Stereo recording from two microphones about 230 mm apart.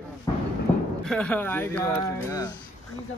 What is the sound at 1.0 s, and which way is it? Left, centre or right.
Speech, centre.